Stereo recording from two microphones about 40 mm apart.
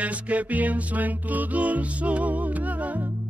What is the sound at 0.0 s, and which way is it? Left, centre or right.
Music, right.